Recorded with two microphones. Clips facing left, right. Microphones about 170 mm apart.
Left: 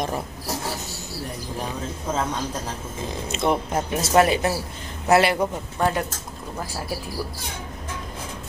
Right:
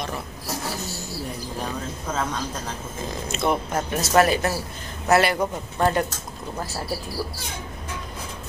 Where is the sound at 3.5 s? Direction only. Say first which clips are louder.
Left 1 dB; 25° left (ahead or behind).